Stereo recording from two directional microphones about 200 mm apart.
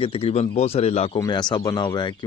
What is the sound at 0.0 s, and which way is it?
Speech, 30° left (ahead or behind).